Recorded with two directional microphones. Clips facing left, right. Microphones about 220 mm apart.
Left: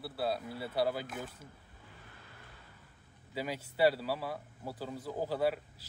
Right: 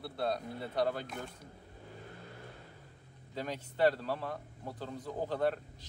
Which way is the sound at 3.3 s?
10° left (ahead or behind).